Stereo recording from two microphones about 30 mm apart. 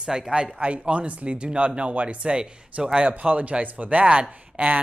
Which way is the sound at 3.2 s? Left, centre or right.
Right.